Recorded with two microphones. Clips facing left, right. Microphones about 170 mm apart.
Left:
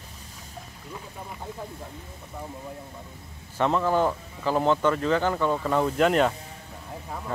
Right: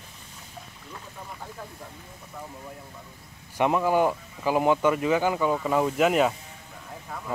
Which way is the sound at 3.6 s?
10° right (ahead or behind).